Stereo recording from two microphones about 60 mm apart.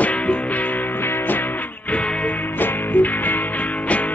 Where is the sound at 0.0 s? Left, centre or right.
Left.